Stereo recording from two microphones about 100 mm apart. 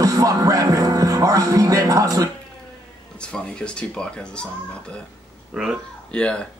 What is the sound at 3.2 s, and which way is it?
Speech, 10° left (ahead or behind).